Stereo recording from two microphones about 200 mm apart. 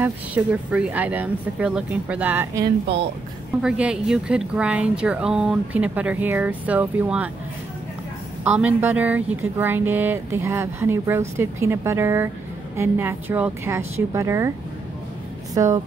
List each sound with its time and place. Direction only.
0.0 s speech: 10° right (ahead or behind)
3.6 s speech: 5° right (ahead or behind)
8.5 s speech: 5° right (ahead or behind)
15.5 s speech: 15° right (ahead or behind)